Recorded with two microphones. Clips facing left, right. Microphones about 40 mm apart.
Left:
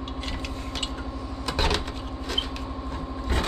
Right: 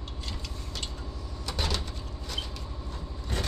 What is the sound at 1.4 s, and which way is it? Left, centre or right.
Printer, left.